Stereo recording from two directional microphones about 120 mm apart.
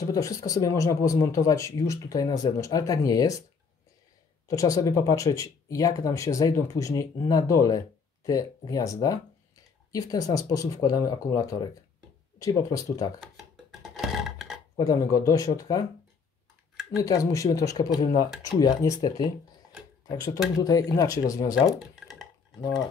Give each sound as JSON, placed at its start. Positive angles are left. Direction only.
{"t": 0.0, "sound": "speech", "side_deg": 30}
{"t": 4.5, "sound": "speech", "side_deg": 30}
{"t": 13.2, "sound": "a sound", "side_deg": 0}
{"t": 14.8, "sound": "speech", "side_deg": 30}
{"t": 16.9, "sound": "speech", "side_deg": 30}
{"t": 21.6, "sound": "dishes", "side_deg": -5}